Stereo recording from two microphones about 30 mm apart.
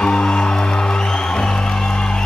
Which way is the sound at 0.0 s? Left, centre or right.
Left.